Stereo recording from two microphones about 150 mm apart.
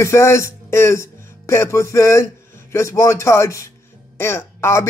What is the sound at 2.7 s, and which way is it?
Music, 20° left (ahead or behind).